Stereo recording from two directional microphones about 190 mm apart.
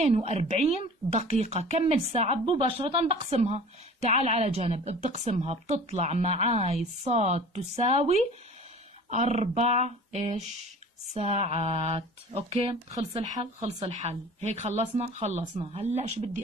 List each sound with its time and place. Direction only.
0.0 s speech: 35° right (ahead or behind)